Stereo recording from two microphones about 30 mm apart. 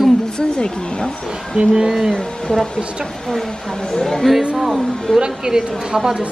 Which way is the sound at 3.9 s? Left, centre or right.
Left.